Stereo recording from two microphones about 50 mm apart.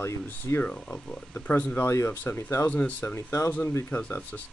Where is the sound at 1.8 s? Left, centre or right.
Left.